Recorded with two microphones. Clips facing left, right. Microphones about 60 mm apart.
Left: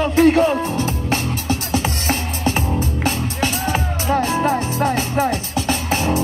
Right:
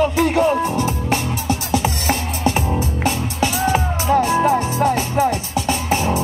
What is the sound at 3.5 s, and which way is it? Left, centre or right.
Music, right.